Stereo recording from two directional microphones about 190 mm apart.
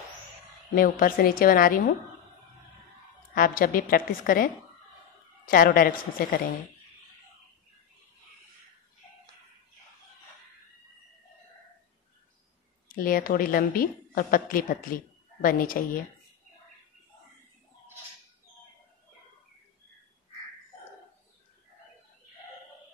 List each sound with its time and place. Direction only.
0.7 s a woman's voice: 45° left (ahead or behind)
3.3 s a woman's voice: 45° left (ahead or behind)
12.8 s a woman's voice: 50° left (ahead or behind)